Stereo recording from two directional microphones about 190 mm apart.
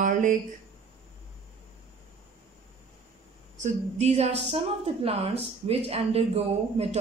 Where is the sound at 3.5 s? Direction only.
35° right (ahead or behind).